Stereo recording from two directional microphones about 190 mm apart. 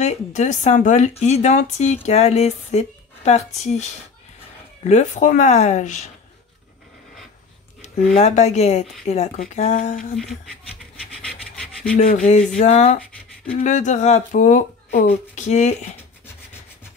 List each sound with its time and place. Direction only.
0.0 s speech: 35° left (ahead or behind)
4.8 s speech: 40° left (ahead or behind)
7.8 s speech: 35° left (ahead or behind)
12.0 s speech: 40° left (ahead or behind)